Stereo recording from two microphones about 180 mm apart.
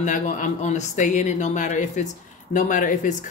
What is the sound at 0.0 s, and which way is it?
A woman's voice, 45° left (ahead or behind).